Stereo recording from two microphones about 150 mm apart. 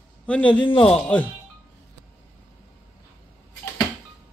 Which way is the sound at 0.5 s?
35° left (ahead or behind).